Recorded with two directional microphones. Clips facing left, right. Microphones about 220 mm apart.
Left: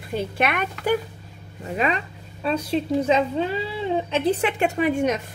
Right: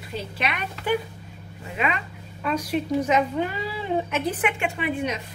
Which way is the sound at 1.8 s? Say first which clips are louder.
Left 3 dB; 35° left (ahead or behind).